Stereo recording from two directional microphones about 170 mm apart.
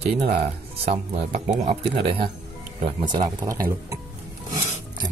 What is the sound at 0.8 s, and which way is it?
Speech, 40° right (ahead or behind).